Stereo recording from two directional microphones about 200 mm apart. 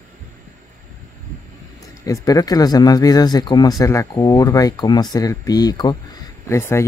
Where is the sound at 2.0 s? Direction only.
15° left (ahead or behind).